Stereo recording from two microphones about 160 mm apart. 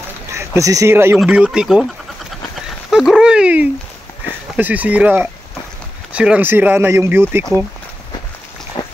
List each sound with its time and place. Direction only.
0.6 s speech: 20° right (ahead or behind); by 1.9 s 5° right (ahead or behind)
2.9 s dog: 5° right (ahead or behind)
4.6 s speech: 10° right (ahead or behind)
8.8 s a sound: 30° left (ahead or behind)